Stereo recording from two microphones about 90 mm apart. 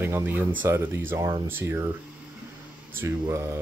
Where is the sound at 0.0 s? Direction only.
25° right (ahead or behind).